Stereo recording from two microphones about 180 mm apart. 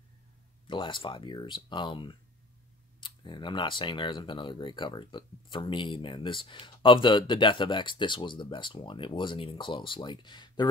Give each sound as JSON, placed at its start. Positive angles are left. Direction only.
{"t": 0.7, "sound": "speech", "side_deg": 25}